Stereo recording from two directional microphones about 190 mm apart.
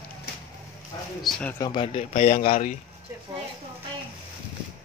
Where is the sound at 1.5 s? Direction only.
25° left (ahead or behind); by 2.7 s 40° left (ahead or behind).